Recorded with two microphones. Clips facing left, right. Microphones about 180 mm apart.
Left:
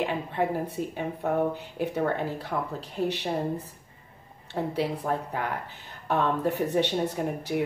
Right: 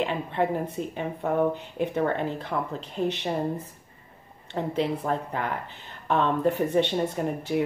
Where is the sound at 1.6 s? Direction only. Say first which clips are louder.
Right 2 dB; 10° left (ahead or behind).